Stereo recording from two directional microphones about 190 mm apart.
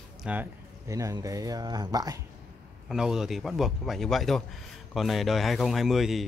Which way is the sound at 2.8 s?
5° right (ahead or behind).